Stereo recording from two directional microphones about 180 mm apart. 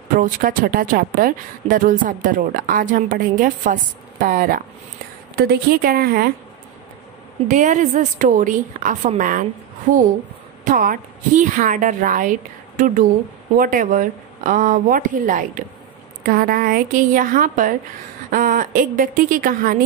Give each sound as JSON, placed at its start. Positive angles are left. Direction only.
{"t": 0.1, "sound": "a woman's voice", "side_deg": -50}
{"t": 7.4, "sound": "a woman's voice", "side_deg": -45}
{"t": 10.6, "sound": "a woman's voice", "side_deg": -50}